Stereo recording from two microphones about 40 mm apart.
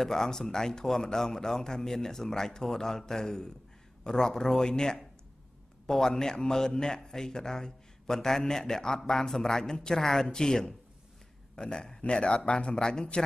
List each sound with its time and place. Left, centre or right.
0.0 s a man's voice: centre